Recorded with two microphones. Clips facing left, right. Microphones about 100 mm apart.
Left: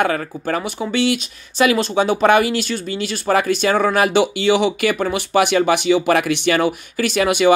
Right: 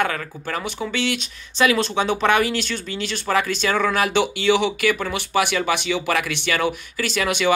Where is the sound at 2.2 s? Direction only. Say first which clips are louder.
Left 5 dB; 40° left (ahead or behind).